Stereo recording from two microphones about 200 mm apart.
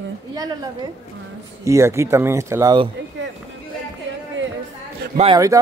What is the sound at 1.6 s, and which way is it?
A man's voice, 15° right (ahead or behind).